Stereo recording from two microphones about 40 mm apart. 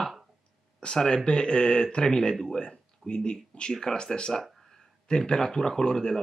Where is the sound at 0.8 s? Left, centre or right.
Left.